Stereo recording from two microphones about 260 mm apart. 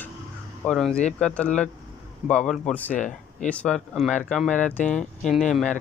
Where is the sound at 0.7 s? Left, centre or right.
Centre.